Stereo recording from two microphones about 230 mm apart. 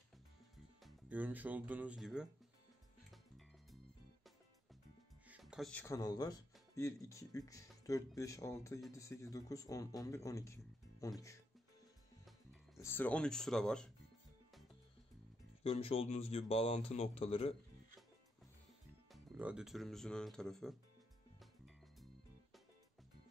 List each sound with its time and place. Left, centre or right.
0.8 s speech: centre
5.3 s speech: centre
12.8 s speech: centre
15.6 s speech: left
19.1 s speech: centre
21.4 s music: centre